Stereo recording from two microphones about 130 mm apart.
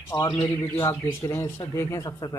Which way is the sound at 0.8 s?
20° left (ahead or behind).